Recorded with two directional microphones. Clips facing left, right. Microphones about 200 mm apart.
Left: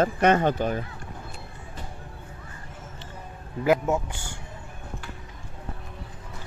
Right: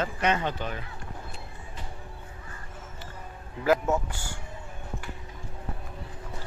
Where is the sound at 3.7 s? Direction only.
15° left (ahead or behind).